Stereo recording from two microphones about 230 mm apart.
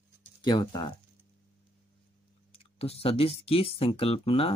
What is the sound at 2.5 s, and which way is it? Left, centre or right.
Speech, left.